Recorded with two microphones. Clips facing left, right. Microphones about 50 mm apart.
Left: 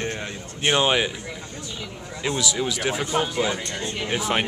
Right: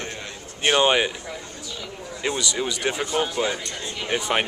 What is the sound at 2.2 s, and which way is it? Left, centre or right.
Speech, centre.